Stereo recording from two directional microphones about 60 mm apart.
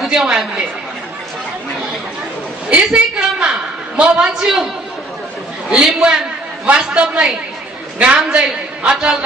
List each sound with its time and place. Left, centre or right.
0.0 s a sound: centre
2.9 s a man's voice: centre
5.7 s a man's voice: centre